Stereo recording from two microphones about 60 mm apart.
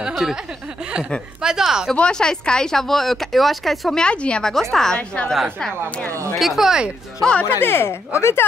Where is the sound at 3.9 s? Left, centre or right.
Centre.